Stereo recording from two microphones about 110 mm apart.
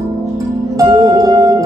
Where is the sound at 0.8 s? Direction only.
35° right (ahead or behind).